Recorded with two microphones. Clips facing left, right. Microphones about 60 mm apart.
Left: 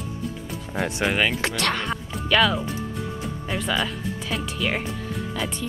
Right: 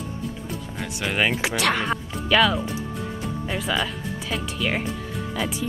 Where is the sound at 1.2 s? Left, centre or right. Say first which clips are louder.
Right 2 dB; centre.